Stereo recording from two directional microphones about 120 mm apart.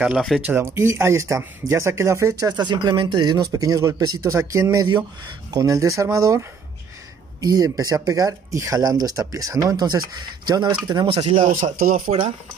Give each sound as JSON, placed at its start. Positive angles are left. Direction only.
{"t": 0.0, "sound": "speech", "side_deg": -5}
{"t": 11.1, "sound": "speech", "side_deg": -55}
{"t": 11.4, "sound": "speech", "side_deg": -90}